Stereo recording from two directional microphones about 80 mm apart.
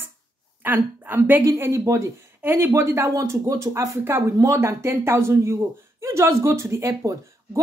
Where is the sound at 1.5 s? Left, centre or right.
Right.